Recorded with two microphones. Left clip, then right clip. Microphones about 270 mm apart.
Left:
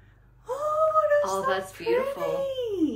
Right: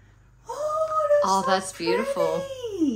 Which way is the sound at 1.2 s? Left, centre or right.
Centre.